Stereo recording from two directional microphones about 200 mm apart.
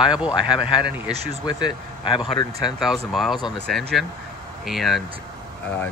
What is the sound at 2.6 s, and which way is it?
Speech, centre (ahead or behind).